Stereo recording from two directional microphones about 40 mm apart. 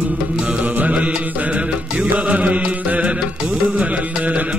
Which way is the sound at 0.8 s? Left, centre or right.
Right.